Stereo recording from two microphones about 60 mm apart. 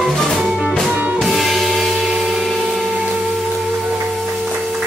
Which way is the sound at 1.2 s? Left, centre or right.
Centre.